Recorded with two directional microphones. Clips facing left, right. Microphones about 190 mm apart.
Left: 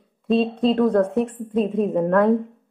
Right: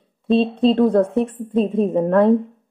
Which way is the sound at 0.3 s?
25° right (ahead or behind).